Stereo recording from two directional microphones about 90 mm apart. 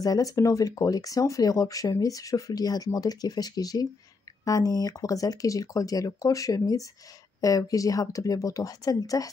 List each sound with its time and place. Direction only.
0.0 s speech: 40° left (ahead or behind)